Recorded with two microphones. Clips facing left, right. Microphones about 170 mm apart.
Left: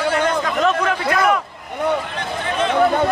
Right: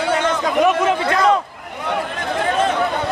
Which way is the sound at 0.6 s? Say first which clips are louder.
Right 3 dB; 20° right (ahead or behind).